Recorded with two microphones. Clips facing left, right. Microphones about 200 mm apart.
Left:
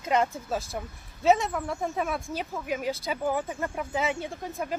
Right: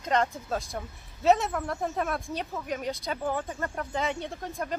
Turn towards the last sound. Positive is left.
turn(degrees=5)  # may be behind; listen again after turning